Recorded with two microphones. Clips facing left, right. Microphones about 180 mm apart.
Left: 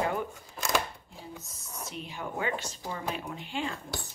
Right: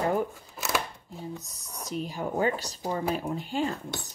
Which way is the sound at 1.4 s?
40° right (ahead or behind).